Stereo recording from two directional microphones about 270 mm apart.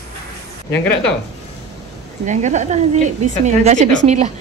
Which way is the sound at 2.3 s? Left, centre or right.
Right.